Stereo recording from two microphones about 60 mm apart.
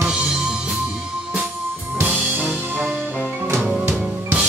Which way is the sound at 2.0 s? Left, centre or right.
Right.